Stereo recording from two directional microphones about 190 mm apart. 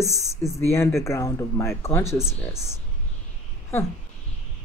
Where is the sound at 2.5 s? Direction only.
35° right (ahead or behind).